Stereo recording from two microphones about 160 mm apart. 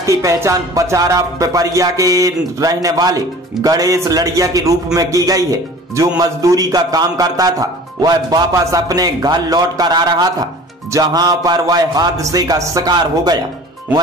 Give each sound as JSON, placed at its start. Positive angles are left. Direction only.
{"t": 0.0, "sound": "a man's voice", "side_deg": -20}